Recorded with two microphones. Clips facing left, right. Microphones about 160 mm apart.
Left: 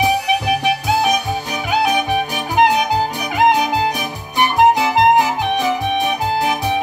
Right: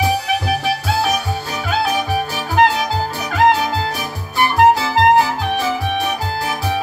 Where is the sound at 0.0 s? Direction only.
15° left (ahead or behind).